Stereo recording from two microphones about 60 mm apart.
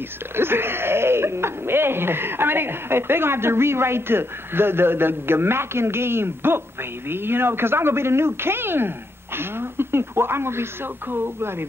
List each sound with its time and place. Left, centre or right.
0.4 s speech: right